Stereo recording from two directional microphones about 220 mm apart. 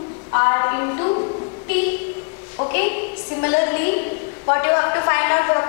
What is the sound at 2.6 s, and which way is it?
A woman's voice, 20° left (ahead or behind).